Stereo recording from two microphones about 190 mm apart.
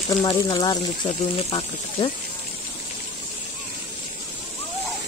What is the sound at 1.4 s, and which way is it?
Speech, 30° left (ahead or behind).